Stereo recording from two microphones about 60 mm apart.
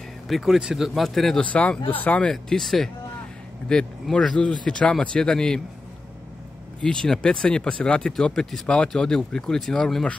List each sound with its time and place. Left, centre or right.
0.3 s a man's voice: centre
1.4 s speech: left
2.3 s a man's voice: centre
6.8 s speech: centre